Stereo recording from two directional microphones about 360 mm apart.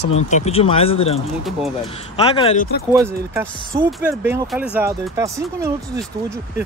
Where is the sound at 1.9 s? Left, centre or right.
Centre.